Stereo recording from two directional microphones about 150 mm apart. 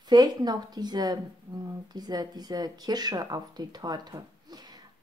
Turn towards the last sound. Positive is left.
turn(degrees=-25)  # may be behind; listen again after turning